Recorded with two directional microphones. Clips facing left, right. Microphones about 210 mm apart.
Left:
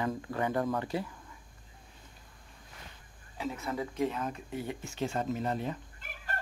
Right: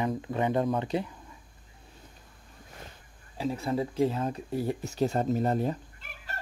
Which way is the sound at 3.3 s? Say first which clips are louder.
Right 6 dB; 30° right (ahead or behind).